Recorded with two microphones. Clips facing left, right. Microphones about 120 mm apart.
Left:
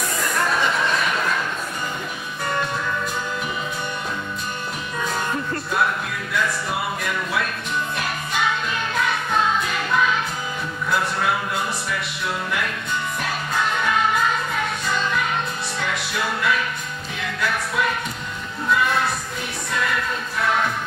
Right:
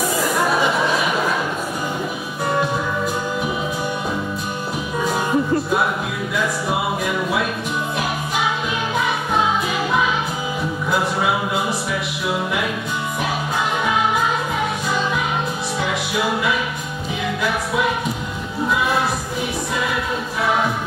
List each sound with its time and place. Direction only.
0.1 s chatter: 10° right (ahead or behind)
2.4 s music: 5° right (ahead or behind)
5.0 s music: 10° right (ahead or behind)
8.9 s music: 5° right (ahead or behind)
13.8 s music: 10° right (ahead or behind)
15.8 s music: 5° right (ahead or behind)